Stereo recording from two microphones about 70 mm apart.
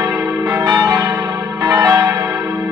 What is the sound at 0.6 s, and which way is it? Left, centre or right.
Change ringing, right.